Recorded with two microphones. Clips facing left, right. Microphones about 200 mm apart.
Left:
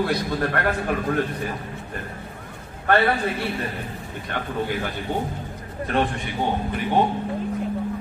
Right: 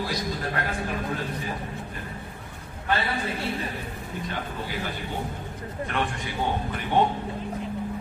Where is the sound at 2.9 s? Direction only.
60° left (ahead or behind).